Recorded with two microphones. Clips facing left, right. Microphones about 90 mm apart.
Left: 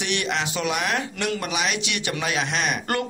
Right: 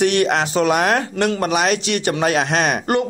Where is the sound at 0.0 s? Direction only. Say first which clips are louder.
Right 9 dB; 45° right (ahead or behind).